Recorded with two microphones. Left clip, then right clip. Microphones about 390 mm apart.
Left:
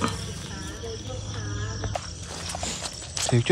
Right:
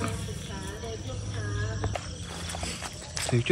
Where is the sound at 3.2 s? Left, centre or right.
Centre.